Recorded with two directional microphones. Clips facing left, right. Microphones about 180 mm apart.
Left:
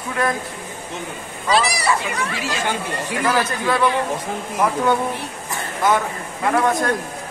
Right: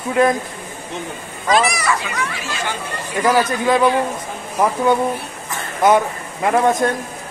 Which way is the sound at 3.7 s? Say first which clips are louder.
Right 5 dB; 15° right (ahead or behind).